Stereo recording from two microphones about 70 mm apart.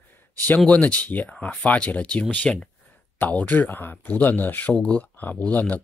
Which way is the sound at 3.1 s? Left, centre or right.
Left.